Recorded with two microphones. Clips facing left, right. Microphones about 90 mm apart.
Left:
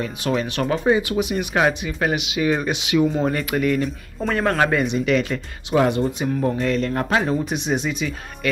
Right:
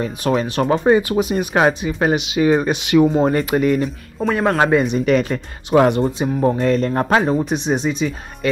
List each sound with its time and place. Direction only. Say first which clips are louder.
0.0 s speech: right 4 dB; 40° right (ahead or behind)
0.8 s speech: right 3 dB; 45° right (ahead or behind); by 3.9 s 25° right (ahead or behind)
4.2 s speech: right 3 dB; 10° right (ahead or behind)
4.6 s speech: right 5 dB; 25° right (ahead or behind)
4.9 s speech: right 3 dB; 40° right (ahead or behind)
5.8 s speech: right 4 dB; 55° right (ahead or behind)
6.0 s speech: right 4 dB; 35° right (ahead or behind)